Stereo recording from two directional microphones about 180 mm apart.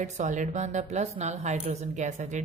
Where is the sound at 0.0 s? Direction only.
40° right (ahead or behind).